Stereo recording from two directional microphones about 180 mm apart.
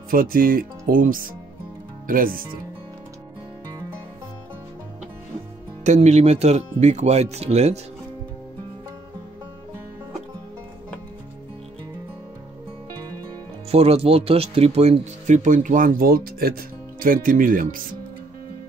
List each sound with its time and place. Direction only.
0.1 s speech: 50° right (ahead or behind)
5.9 s speech: 40° right (ahead or behind)
13.7 s speech: 35° right (ahead or behind); by 17.8 s 50° right (ahead or behind)